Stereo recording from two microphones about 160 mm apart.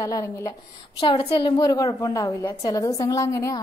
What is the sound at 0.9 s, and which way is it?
A woman's voice, 35° left (ahead or behind).